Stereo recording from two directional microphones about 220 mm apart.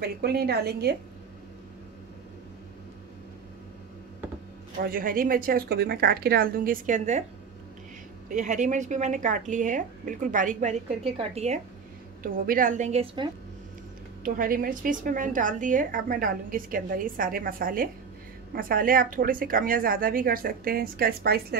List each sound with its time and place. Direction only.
0.0 s a woman's voice: 45° right (ahead or behind)
4.9 s a woman's voice: 40° right (ahead or behind)
8.3 s a woman's voice: 35° right (ahead or behind)
14.2 s a woman's voice: 40° right (ahead or behind)